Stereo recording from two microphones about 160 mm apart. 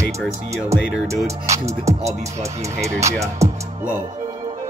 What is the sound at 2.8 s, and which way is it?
Speech, 20° right (ahead or behind).